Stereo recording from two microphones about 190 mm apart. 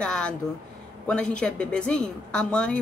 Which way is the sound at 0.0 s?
5° left (ahead or behind).